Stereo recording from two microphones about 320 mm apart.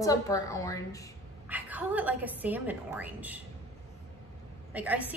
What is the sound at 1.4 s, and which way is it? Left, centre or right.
A woman's voice, centre.